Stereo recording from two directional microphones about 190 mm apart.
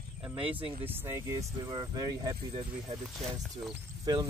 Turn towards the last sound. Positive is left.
turn(degrees=-20)  # may be behind; listen again after turning